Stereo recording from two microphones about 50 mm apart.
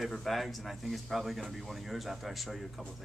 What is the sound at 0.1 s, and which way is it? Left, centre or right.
Speech, centre.